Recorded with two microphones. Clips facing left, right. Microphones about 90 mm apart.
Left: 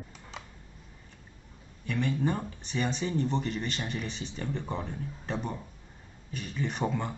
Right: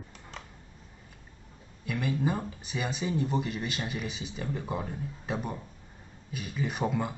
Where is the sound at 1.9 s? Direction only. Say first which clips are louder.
Even; 5° right (ahead or behind).